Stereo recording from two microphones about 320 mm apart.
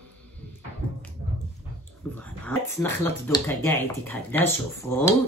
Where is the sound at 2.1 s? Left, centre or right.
Centre.